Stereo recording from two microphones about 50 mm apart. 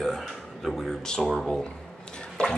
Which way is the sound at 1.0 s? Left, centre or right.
Centre.